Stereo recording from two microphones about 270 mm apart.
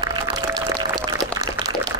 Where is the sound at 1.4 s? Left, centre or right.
Centre.